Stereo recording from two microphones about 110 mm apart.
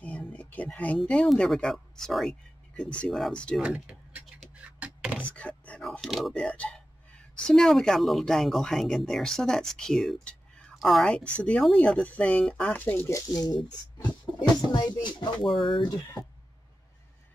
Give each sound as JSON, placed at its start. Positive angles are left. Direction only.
{"t": 0.0, "sound": "speech", "side_deg": 15}
{"t": 3.6, "sound": "a sound", "side_deg": -10}
{"t": 5.2, "sound": "speech", "side_deg": 10}
{"t": 6.3, "sound": "speech", "side_deg": 10}
{"t": 13.4, "sound": "speech", "side_deg": 35}
{"t": 14.7, "sound": "music", "side_deg": 40}